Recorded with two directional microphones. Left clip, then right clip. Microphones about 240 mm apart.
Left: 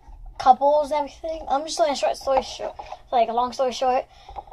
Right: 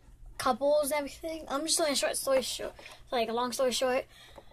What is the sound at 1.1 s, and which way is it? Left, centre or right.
Speech, centre.